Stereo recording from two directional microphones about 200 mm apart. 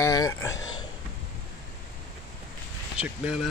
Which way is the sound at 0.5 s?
80° left.